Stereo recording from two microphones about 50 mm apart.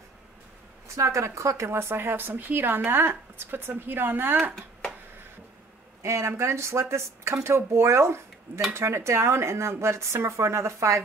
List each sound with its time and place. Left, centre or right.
0.9 s speech: right
6.0 s speech: right